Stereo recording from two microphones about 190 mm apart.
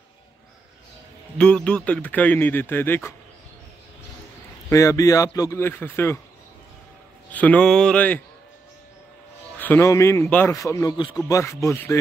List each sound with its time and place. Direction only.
1.4 s a man's voice: 5° left (ahead or behind)
4.6 s a man's voice: 15° left (ahead or behind)
7.3 s a man's voice: 5° left (ahead or behind)
9.6 s a man's voice: 10° left (ahead or behind)